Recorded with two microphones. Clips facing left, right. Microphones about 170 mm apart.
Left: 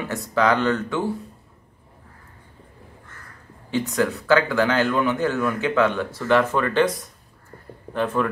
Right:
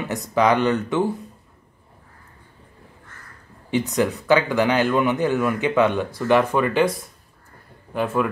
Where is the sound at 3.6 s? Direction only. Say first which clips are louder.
Right 1 dB; 15° right (ahead or behind).